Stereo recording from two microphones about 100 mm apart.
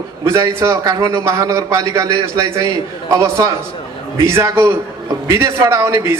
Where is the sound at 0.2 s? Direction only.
30° right (ahead or behind).